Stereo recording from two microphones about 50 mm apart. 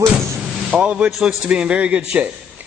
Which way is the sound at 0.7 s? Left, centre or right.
Right.